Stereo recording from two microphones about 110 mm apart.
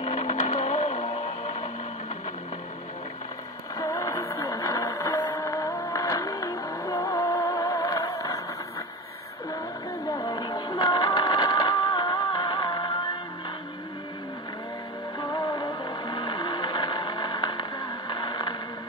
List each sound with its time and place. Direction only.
0.0 s music: 90° left
3.7 s radio: 30° left (ahead or behind)
4.4 s music: 30° left (ahead or behind)
10.0 s music: 35° left (ahead or behind)
15.1 s music: 40° left (ahead or behind)